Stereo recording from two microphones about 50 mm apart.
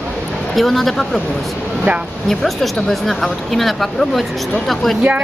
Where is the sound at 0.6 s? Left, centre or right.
Centre.